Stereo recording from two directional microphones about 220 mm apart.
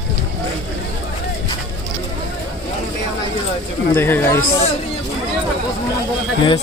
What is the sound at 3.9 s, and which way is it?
Speech, 10° left (ahead or behind).